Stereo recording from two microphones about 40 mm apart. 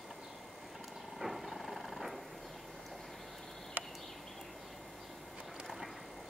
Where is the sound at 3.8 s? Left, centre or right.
Right.